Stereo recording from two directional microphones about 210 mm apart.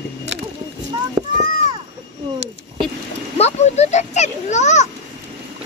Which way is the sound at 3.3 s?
30° left (ahead or behind).